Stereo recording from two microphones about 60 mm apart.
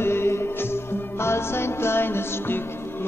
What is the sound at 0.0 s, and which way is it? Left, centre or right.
Music, left.